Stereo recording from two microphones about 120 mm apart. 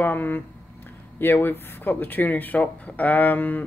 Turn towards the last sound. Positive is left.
turn(degrees=15)  # may be behind; listen again after turning